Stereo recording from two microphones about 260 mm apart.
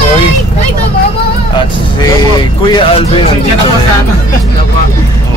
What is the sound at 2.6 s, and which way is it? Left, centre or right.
Speech, centre.